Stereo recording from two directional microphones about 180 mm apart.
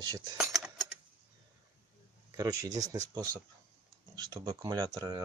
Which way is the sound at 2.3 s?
20° right (ahead or behind).